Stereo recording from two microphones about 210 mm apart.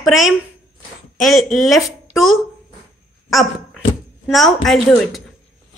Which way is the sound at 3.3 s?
Centre (ahead or behind).